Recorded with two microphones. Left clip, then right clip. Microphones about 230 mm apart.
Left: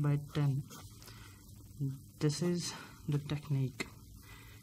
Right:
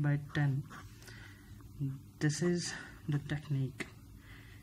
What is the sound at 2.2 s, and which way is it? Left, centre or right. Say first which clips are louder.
Speech: right 1 dB; left.